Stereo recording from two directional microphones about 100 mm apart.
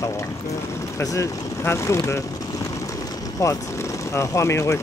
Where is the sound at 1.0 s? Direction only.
30° left (ahead or behind).